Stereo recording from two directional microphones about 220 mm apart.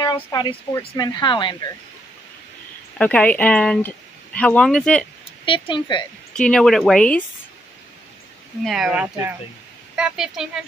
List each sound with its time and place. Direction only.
0.0 s speech: 20° left (ahead or behind)
3.0 s speech: 5° left (ahead or behind)
5.4 s speech: 20° left (ahead or behind)
6.3 s speech: 5° left (ahead or behind)
8.6 s speech: centre (ahead or behind)